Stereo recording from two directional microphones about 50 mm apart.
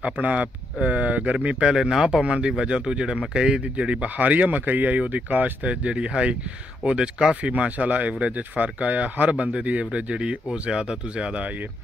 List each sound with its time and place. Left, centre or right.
0.0 s speech: right
7.5 s speech: right